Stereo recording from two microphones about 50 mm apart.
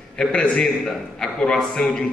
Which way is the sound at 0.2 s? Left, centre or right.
Centre.